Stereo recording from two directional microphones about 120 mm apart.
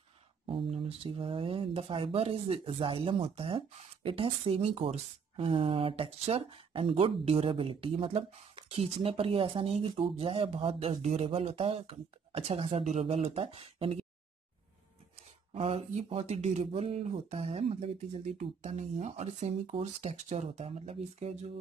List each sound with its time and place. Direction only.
0.5 s speech: 50° right (ahead or behind)
12.8 s speech: 65° right (ahead or behind)
15.5 s speech: 55° right (ahead or behind)